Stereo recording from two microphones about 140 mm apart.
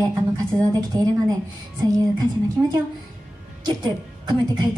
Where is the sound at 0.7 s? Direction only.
25° right (ahead or behind).